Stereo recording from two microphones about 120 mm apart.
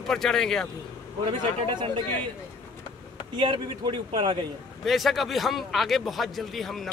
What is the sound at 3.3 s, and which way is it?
A man's voice, 40° right (ahead or behind).